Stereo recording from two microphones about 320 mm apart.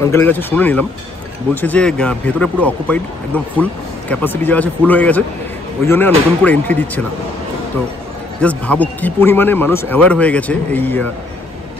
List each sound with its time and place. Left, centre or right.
0.0 s speech: centre
4.1 s speech: centre
8.4 s speech: centre